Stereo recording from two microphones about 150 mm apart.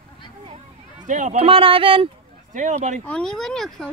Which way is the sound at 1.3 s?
40° right (ahead or behind).